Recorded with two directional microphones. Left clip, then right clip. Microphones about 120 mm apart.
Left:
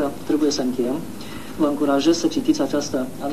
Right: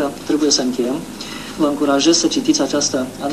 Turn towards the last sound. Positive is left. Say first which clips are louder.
# right 5 dB
turn(degrees=-30)  # may be behind; listen again after turning